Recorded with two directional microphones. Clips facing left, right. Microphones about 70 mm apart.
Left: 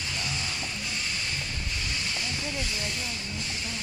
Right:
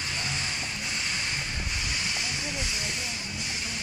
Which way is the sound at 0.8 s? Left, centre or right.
Right.